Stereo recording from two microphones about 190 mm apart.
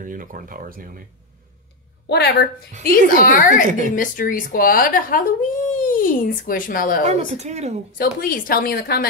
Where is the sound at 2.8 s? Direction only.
45° left (ahead or behind).